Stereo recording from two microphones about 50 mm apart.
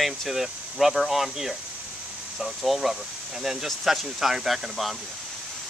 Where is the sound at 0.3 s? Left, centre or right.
Centre.